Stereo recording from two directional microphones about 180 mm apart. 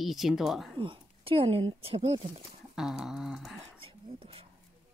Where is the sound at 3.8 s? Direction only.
30° right (ahead or behind).